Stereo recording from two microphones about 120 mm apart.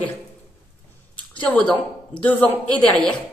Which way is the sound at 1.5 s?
10° left (ahead or behind).